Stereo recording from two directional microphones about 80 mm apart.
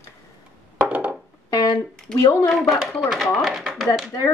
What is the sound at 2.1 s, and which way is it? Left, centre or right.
Speech, centre.